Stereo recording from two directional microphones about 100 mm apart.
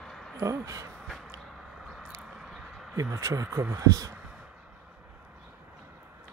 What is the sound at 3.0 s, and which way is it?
Speech, 35° right (ahead or behind).